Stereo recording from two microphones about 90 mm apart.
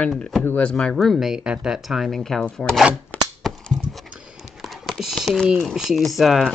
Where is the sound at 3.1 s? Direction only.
15° left (ahead or behind).